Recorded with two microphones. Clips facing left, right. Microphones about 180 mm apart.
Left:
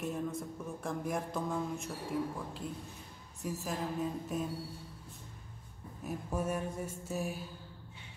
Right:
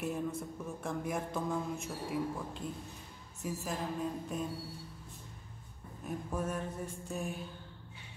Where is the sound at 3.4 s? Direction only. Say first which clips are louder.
Even; centre (ahead or behind).